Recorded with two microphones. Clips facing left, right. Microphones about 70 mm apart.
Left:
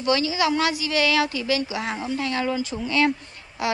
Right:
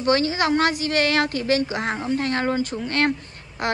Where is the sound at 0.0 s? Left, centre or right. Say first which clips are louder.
Right 1 dB; right.